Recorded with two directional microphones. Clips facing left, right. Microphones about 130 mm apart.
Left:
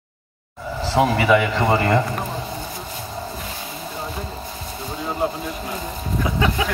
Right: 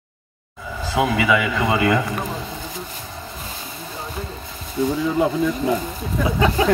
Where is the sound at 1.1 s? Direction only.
35° left (ahead or behind).